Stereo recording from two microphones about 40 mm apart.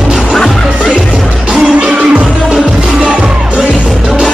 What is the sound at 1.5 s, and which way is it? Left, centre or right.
Music, right.